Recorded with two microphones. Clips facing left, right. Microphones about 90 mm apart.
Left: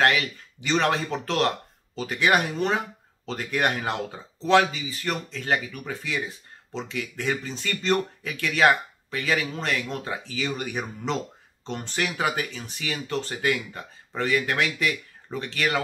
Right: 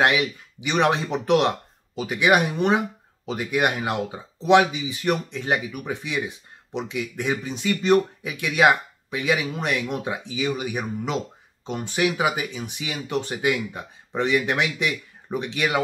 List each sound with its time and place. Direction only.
0.0 s speech: 15° right (ahead or behind)